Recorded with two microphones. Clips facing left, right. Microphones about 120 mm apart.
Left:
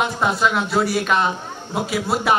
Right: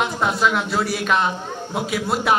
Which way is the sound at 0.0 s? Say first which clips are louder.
Left 1 dB; centre (ahead or behind).